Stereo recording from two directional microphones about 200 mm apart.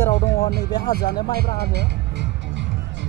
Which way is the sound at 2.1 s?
65° right (ahead or behind).